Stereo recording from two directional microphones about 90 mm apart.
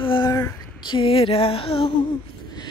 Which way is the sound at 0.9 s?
85° left.